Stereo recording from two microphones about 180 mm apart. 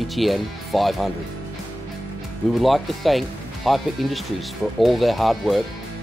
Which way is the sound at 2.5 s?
Centre (ahead or behind).